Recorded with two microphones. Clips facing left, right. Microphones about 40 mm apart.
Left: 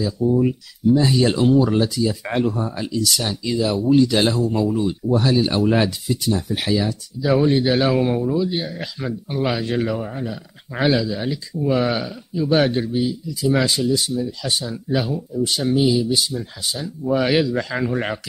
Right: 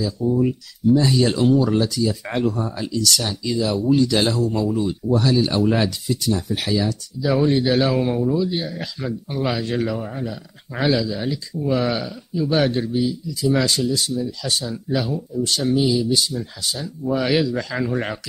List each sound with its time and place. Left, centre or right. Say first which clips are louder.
0.0 s speech: left 1 dB; centre
3.1 s speech: even; centre